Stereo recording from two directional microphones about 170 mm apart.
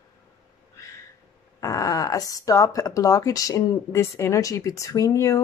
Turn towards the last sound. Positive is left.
turn(degrees=20)  # may be behind; listen again after turning